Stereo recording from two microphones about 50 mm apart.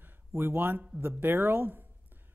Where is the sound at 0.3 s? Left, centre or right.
Right.